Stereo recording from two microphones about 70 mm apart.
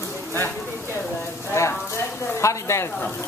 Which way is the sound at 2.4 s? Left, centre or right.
Left.